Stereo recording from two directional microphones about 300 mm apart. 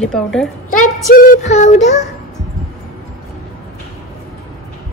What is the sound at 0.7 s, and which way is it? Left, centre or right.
Speech, left.